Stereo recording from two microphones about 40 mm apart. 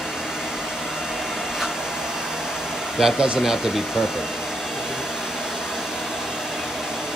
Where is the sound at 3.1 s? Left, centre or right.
Centre.